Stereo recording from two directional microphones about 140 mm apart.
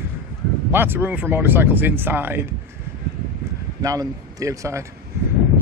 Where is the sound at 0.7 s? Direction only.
15° right (ahead or behind).